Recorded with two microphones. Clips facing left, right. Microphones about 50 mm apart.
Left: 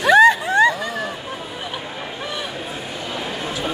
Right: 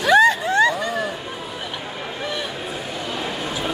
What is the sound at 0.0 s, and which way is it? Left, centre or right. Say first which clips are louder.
Vehicle: left 2 dB; centre.